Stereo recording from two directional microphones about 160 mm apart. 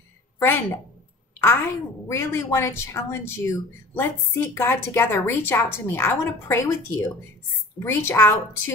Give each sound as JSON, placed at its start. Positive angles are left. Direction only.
{"t": 0.4, "sound": "a woman's voice", "side_deg": 15}
{"t": 2.0, "sound": "speech", "side_deg": 15}